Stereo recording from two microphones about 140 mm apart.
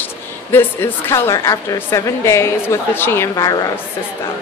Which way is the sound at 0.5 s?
15° left (ahead or behind).